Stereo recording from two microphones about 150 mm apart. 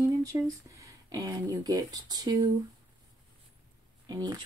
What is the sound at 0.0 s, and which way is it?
Speech, 20° right (ahead or behind).